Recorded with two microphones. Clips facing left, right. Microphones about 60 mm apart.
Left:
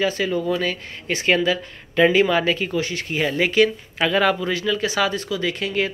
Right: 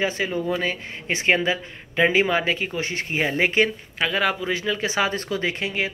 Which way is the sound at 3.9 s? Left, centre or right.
Centre.